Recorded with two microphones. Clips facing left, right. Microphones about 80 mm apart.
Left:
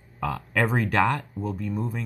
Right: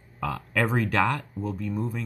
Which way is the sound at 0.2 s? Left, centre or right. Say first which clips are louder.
Left 1 dB; centre.